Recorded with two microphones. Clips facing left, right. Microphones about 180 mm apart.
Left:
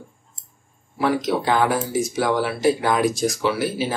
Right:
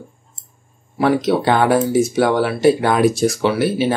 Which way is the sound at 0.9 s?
65° right (ahead or behind).